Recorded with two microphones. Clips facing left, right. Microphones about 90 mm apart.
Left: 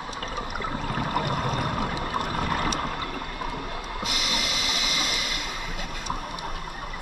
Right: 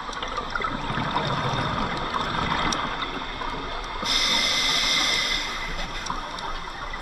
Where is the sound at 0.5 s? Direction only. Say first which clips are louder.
Right 2 dB; 50° right (ahead or behind).